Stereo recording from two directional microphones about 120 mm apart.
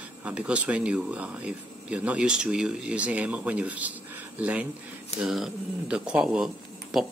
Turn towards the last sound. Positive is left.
turn(degrees=0)  # may be behind; listen again after turning